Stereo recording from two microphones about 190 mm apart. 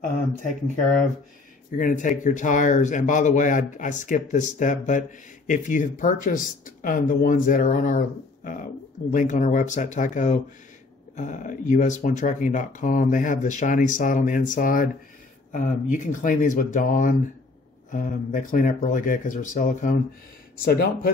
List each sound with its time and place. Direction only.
0.0 s a man's voice: 45° left (ahead or behind)
9.1 s a man's voice: 40° left (ahead or behind)